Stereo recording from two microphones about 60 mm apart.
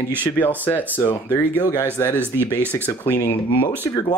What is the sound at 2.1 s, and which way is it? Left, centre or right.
Speech, right.